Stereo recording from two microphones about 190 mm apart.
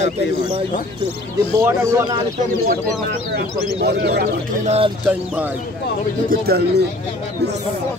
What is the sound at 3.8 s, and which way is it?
Speech, 60° right (ahead or behind).